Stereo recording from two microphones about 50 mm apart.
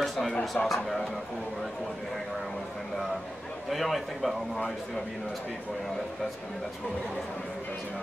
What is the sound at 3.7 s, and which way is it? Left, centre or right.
Speech, centre.